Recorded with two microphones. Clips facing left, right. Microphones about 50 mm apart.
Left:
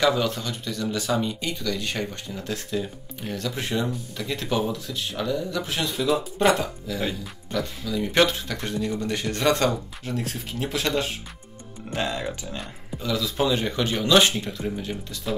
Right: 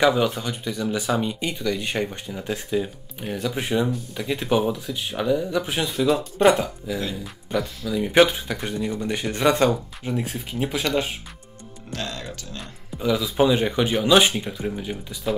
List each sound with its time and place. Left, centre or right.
0.0 s speech: centre
5.9 s speech: centre
6.9 s speech: centre
11.9 s speech: centre
13.0 s speech: centre